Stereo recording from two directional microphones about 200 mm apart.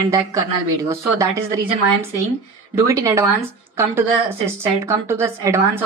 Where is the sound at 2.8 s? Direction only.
15° right (ahead or behind).